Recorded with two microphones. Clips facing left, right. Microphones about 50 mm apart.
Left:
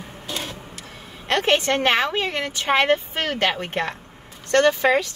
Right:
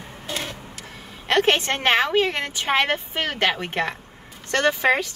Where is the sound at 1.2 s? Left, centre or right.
Centre.